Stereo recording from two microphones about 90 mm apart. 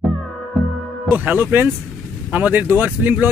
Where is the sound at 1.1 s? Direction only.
20° right (ahead or behind).